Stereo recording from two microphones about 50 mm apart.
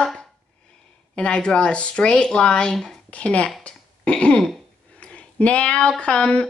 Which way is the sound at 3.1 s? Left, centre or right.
Left.